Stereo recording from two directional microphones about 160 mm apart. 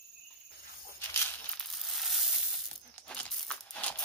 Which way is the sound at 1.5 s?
Centre (ahead or behind).